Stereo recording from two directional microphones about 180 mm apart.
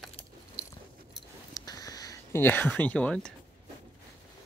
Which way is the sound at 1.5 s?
20° left (ahead or behind).